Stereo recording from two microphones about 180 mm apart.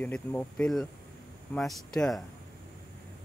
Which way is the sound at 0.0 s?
10° left (ahead or behind).